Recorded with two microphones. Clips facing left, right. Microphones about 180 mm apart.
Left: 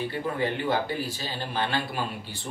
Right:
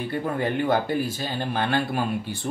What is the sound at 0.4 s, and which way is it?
Speech, 50° right (ahead or behind).